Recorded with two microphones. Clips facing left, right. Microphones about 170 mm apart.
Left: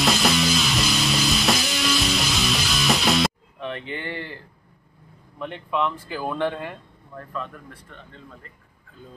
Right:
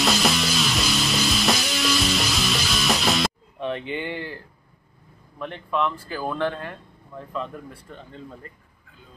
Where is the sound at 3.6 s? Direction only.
15° right (ahead or behind).